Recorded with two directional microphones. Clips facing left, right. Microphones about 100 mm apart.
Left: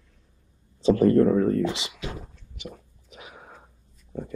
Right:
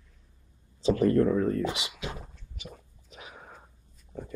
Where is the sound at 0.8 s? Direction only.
40° left (ahead or behind).